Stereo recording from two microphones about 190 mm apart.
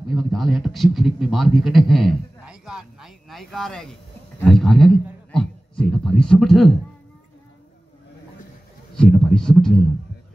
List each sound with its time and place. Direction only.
0.1 s a man's voice: centre (ahead or behind)
8.9 s speech: 5° left (ahead or behind)